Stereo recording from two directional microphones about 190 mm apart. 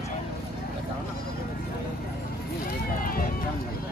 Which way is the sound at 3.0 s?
50° left (ahead or behind).